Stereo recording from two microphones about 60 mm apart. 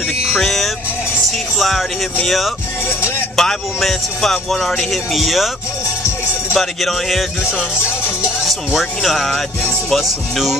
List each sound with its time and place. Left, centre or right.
0.3 s music: centre
1.6 s speech: centre
2.9 s music: left
3.3 s speech: centre
6.5 s speech: centre
8.5 s speech: centre
9.3 s music: centre
9.9 s speech: centre